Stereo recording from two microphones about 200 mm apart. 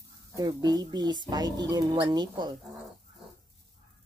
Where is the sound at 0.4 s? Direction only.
20° right (ahead or behind).